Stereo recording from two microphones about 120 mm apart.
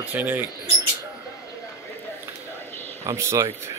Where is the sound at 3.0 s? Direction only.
25° right (ahead or behind).